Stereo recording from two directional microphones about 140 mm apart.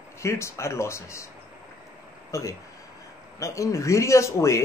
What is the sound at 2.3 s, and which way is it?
Speech, 25° left (ahead or behind).